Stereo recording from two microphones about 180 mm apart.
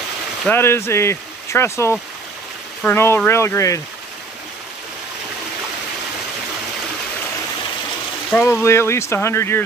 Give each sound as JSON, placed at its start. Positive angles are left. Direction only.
{"t": 0.5, "sound": "speech", "side_deg": 15}
{"t": 8.3, "sound": "speech", "side_deg": 10}